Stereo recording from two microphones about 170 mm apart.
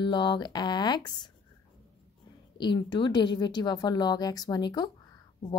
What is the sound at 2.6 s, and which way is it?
Speech, 25° left (ahead or behind).